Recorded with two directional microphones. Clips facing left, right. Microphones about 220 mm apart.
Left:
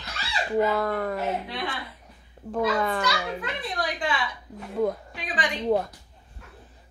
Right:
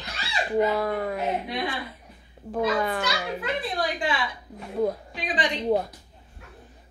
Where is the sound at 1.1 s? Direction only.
15° right (ahead or behind).